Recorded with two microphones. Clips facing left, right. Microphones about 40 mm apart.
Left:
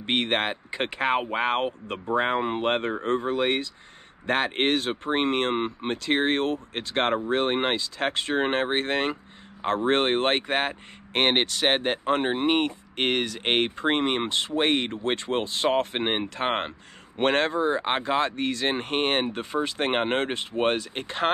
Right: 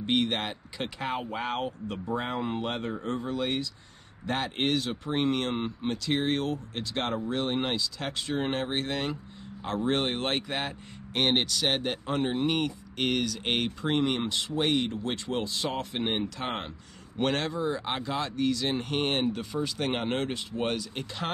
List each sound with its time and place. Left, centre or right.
0.0 s speech: left